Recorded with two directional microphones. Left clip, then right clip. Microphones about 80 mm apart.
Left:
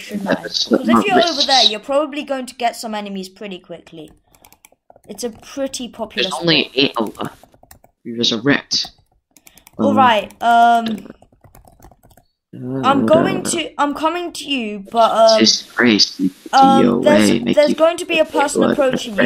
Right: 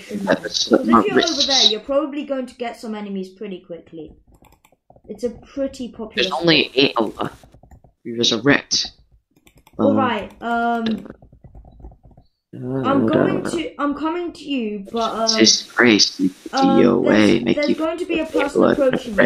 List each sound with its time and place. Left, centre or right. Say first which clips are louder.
0.1 s speech: even; centre
1.9 s speech: left 3 dB; left
5.0 s speech: right 1 dB; left
6.1 s speech: even; centre
9.9 s speech: left 8 dB; left
12.5 s speech: even; centre
13.2 s speech: left 1 dB; left
14.9 s speech: left 11 dB; centre
17.9 s speech: left 5 dB; left
18.2 s speech: left 1 dB; centre